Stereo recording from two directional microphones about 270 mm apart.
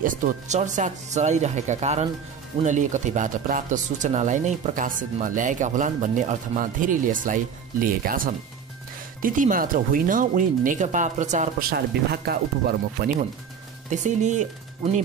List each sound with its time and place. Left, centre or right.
0.0 s speech: right